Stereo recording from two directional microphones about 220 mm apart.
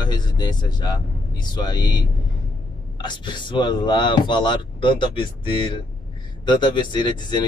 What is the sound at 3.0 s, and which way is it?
Speech, 20° left (ahead or behind).